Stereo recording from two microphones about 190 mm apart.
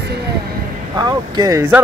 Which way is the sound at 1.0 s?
20° right (ahead or behind).